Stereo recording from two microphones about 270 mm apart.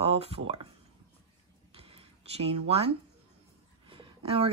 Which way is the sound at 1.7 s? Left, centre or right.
Right.